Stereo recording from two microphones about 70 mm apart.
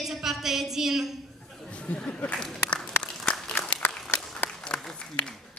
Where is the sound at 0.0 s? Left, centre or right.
Centre.